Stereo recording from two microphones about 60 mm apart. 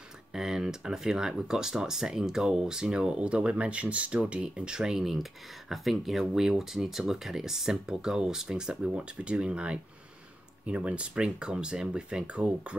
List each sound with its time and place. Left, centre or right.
0.3 s speech: centre